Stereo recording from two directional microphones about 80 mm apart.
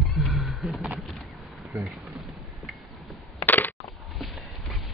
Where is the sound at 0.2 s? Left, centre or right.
Centre.